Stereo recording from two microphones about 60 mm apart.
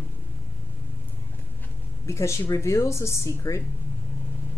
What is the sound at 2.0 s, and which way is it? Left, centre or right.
A woman's voice, left.